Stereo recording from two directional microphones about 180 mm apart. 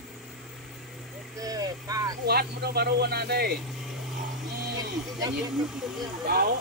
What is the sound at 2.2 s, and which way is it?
Speech, 60° right (ahead or behind).